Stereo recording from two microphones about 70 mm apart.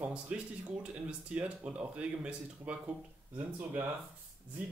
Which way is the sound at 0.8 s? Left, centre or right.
Centre.